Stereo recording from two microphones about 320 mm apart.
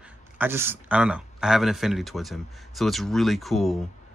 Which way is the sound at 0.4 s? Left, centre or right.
Centre.